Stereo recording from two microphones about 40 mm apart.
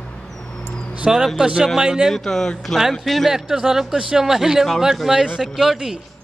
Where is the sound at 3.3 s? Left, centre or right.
Centre.